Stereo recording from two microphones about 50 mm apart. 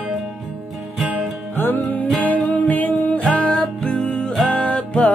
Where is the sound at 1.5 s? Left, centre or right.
Left.